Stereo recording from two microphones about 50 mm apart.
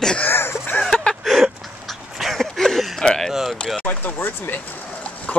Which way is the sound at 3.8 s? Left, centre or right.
Left.